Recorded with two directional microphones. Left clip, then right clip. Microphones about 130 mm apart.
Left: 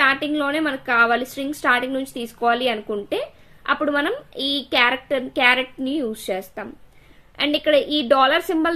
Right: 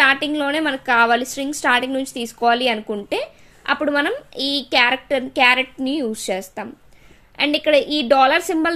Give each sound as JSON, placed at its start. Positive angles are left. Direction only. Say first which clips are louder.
{"t": 0.0, "sound": "a woman's voice", "louder": "right 2 dB", "side_deg": -45}
{"t": 7.3, "sound": "a woman's voice", "louder": "right 2 dB", "side_deg": -35}